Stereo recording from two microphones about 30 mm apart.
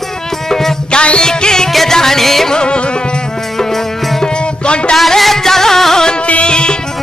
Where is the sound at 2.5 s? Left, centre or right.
Left.